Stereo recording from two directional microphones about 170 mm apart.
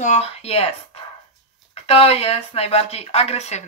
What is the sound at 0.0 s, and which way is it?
Speech, 40° left (ahead or behind).